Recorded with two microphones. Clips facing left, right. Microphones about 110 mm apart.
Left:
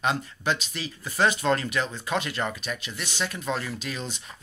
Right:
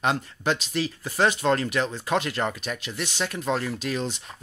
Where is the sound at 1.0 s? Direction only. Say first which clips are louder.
Left 1 dB; 25° right (ahead or behind).